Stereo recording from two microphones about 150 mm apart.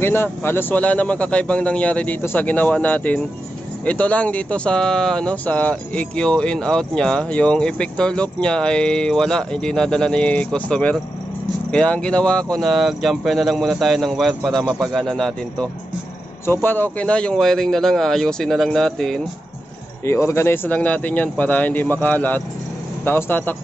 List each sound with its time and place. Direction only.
0.0 s speech: 15° left (ahead or behind)
20.1 s speech: 20° left (ahead or behind)